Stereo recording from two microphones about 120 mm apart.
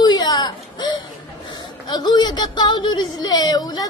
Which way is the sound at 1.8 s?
35° left (ahead or behind).